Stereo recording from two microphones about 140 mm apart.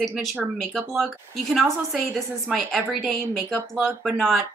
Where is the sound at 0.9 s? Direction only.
Centre (ahead or behind).